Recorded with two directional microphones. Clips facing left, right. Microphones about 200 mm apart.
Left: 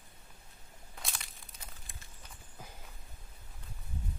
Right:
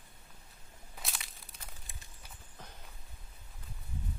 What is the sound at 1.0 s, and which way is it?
Crumpling, centre (ahead or behind).